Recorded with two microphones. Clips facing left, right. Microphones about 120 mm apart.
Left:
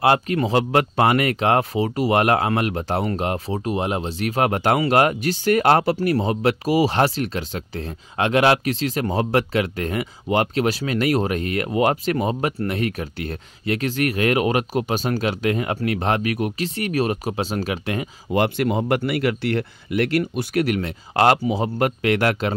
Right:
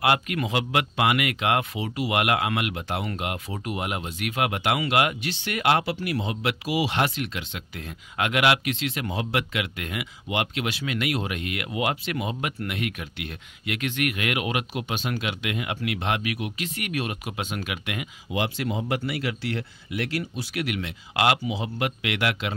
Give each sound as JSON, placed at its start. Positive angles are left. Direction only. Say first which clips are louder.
{"t": 0.0, "sound": "speech", "louder": "left 5 dB", "side_deg": 30}
{"t": 16.6, "sound": "speech", "louder": "left 8 dB", "side_deg": 35}
{"t": 18.3, "sound": "speech", "louder": "left 8 dB", "side_deg": 55}
{"t": 20.6, "sound": "speech", "louder": "left 7 dB", "side_deg": 40}